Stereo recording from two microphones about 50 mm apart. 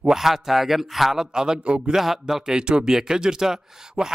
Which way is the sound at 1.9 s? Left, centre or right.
Centre.